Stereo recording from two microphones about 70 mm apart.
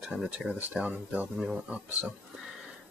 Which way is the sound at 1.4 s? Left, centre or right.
Centre.